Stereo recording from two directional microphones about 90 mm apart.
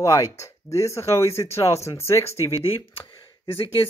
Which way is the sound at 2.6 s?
90° left.